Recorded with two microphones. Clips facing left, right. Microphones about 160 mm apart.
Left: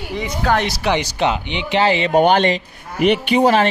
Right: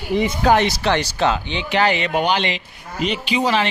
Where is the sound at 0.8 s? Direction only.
15° left (ahead or behind).